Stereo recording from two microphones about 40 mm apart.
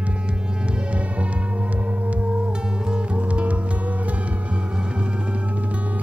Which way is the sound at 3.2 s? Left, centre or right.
Right.